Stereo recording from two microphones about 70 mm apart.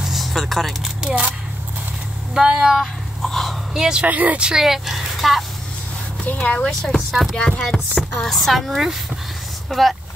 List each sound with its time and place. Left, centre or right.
0.0 s a sound: centre
1.0 s speech: centre
2.3 s speech: centre
3.2 s a sound: centre
3.7 s speech: centre
4.0 s speech: right
4.5 s speech: centre
6.4 s speech: centre
6.8 s speech: centre
7.3 s chopping: centre
8.2 s speech: centre